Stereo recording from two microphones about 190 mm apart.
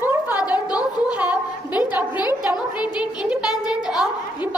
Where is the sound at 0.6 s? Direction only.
20° left (ahead or behind).